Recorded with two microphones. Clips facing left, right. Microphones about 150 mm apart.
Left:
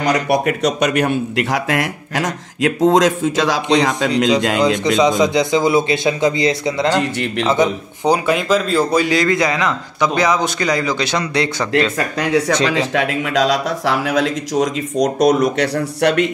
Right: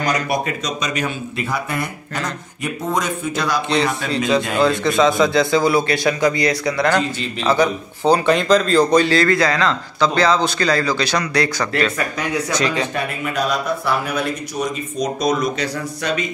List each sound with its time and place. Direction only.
0.0 s a man's voice: 70° left (ahead or behind); by 4.1 s 90° left
4.6 s a man's voice: 15° left (ahead or behind)
7.0 s a man's voice: 65° left (ahead or behind)
7.4 s a man's voice: 20° left (ahead or behind)
12.9 s a man's voice: 90° left; by 16.3 s 70° left (ahead or behind)